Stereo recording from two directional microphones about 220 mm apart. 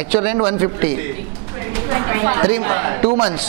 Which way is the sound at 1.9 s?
15° right (ahead or behind).